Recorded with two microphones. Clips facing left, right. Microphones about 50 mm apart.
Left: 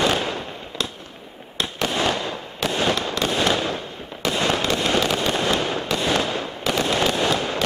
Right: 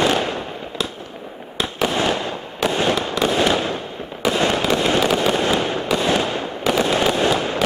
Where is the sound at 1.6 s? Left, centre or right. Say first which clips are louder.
Right 3 dB; centre.